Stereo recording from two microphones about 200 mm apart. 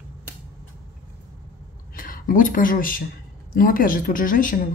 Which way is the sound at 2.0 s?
45° left (ahead or behind).